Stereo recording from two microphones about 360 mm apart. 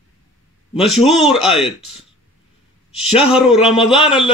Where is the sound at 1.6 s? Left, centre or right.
Centre.